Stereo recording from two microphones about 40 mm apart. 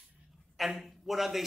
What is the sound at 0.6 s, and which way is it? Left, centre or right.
Speech, centre.